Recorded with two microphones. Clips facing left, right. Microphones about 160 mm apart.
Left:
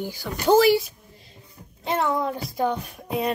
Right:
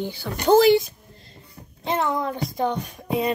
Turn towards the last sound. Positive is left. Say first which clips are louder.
# right 2 dB
turn(degrees=0)  # may be behind; listen again after turning